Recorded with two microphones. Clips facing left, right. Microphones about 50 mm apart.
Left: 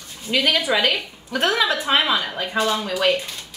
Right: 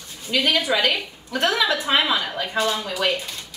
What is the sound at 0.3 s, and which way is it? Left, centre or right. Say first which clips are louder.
A woman's voice: left 1 dB; centre.